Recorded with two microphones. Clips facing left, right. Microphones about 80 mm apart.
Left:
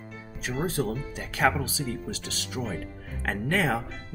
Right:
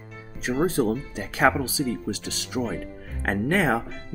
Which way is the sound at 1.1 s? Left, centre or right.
Centre.